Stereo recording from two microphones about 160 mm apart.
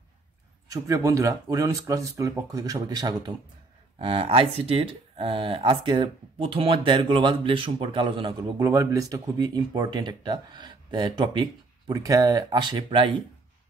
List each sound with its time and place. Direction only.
0.7 s speech: 20° right (ahead or behind)
8.6 s speech: 20° right (ahead or behind)